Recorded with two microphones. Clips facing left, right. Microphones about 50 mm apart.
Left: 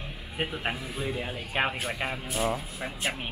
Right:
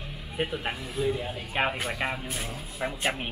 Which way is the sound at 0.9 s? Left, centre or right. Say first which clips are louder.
Right 4 dB; centre.